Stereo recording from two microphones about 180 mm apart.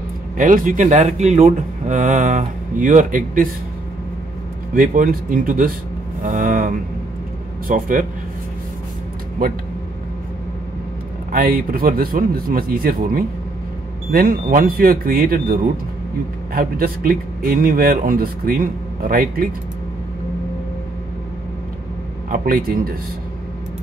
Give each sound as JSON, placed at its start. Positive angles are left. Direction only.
{"t": 0.4, "sound": "speech", "side_deg": -45}
{"t": 4.7, "sound": "speech", "side_deg": -50}
{"t": 6.2, "sound": "a sound", "side_deg": -45}
{"t": 7.6, "sound": "speech", "side_deg": -50}
{"t": 11.3, "sound": "speech", "side_deg": -55}
{"t": 22.3, "sound": "speech", "side_deg": -50}